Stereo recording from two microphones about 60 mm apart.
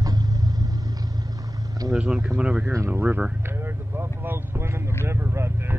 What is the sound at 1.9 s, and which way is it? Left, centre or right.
Speech, centre.